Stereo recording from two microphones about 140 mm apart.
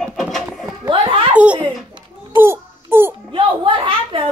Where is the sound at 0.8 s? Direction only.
35° right (ahead or behind).